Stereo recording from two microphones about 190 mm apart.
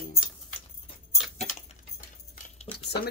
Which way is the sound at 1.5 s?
45° left (ahead or behind).